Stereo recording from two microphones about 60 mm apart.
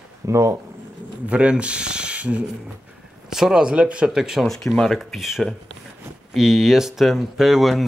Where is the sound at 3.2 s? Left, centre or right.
Centre.